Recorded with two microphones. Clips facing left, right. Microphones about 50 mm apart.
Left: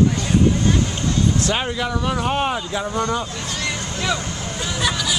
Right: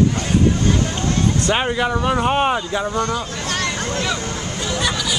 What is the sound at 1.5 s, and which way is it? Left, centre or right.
Speech, centre.